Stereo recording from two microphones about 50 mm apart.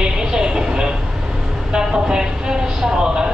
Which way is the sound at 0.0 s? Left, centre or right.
Centre.